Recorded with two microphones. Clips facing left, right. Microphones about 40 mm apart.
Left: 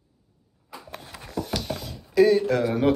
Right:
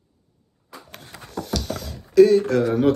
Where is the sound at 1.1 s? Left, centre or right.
Left.